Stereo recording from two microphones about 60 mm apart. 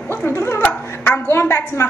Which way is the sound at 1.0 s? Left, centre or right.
Left.